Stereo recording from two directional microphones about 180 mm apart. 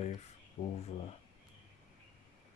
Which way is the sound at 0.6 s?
45° left (ahead or behind).